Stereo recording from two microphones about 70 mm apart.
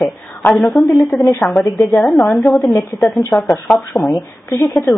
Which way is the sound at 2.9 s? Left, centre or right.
Left.